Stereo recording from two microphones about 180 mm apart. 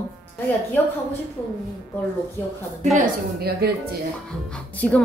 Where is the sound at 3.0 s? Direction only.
60° right (ahead or behind).